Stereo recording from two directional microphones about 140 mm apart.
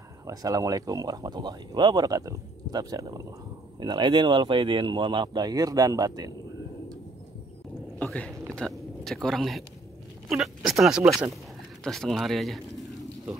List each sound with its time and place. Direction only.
0.3 s speech: 25° right (ahead or behind)
8.0 s whispering: 10° left (ahead or behind)
8.5 s speech: 5° left (ahead or behind)